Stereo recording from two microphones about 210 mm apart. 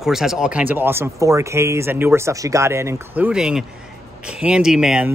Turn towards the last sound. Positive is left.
turn(degrees=-5)  # may be behind; listen again after turning